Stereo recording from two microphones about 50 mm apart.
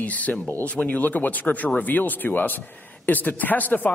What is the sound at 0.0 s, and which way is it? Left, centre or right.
A man's voice, left.